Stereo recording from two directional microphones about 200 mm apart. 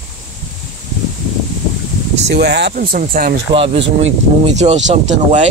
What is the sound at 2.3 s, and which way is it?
Speech, 55° right (ahead or behind).